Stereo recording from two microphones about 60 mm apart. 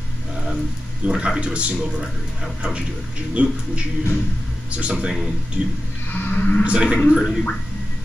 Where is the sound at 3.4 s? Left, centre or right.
Right.